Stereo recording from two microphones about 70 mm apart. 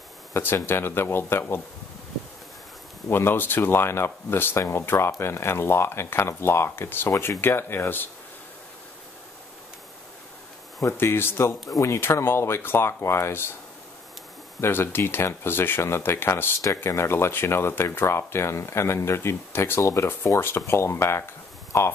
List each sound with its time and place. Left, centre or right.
0.3 s speech: left
3.1 s speech: left
10.8 s speech: left
14.6 s speech: left